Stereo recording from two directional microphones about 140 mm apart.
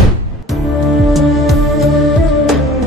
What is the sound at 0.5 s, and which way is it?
Music, centre (ahead or behind).